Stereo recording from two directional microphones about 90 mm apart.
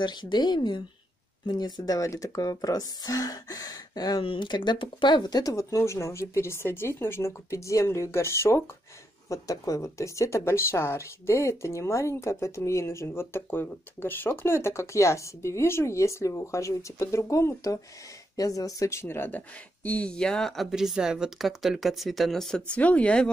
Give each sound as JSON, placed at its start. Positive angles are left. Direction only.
{"t": 0.0, "sound": "speech", "side_deg": 55}
{"t": 4.2, "sound": "speech", "side_deg": 70}
{"t": 20.7, "sound": "speech", "side_deg": -5}
{"t": 22.8, "sound": "speech", "side_deg": 15}